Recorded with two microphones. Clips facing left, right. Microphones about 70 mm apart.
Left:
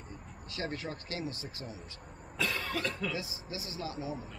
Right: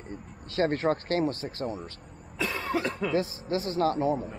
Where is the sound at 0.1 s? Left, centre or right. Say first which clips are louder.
Right 11 dB; right.